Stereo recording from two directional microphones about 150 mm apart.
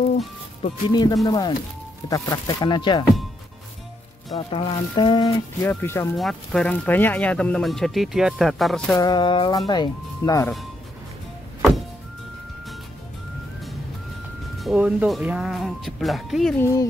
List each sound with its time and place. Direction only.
0.6 s speech: 40° left (ahead or behind)
0.9 s speech: 25° left (ahead or behind)
4.4 s speech: 40° left (ahead or behind)
5.6 s speech: 15° left (ahead or behind)
6.1 s speech: centre (ahead or behind)
8.9 s speech: 25° left (ahead or behind)
14.6 s speech: 5° right (ahead or behind)